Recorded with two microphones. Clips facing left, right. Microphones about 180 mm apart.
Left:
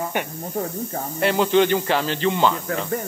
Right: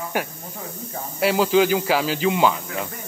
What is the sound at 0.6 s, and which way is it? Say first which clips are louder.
Speech: left 10 dB; 45° left (ahead or behind).